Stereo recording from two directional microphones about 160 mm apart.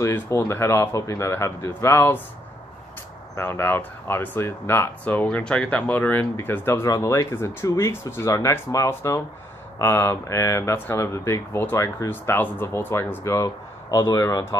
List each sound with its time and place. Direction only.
0.0 s speech: 20° left (ahead or behind)
3.3 s speech: 15° left (ahead or behind)